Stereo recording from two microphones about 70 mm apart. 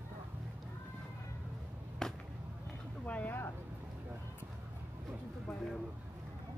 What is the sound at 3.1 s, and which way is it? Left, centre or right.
Vehicle, left.